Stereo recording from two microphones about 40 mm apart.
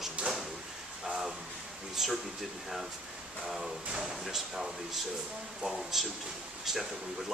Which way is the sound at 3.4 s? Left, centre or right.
Centre.